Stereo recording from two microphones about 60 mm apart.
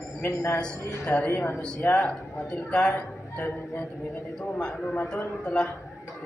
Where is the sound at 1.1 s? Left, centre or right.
Left.